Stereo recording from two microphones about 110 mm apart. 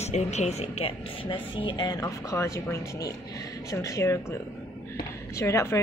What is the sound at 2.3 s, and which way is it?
Speech, 25° left (ahead or behind).